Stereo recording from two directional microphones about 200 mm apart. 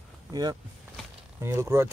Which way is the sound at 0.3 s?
20° right (ahead or behind).